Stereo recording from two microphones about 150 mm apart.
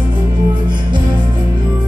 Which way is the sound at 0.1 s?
30° right (ahead or behind).